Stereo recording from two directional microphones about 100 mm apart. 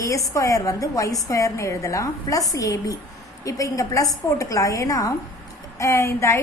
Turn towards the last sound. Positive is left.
turn(degrees=30)  # may be behind; listen again after turning